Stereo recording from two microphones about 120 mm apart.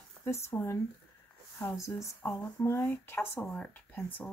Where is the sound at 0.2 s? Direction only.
20° left (ahead or behind).